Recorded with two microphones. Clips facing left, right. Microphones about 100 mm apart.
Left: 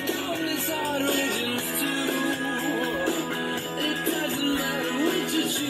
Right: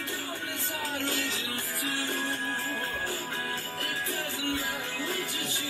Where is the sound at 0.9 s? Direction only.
45° left (ahead or behind).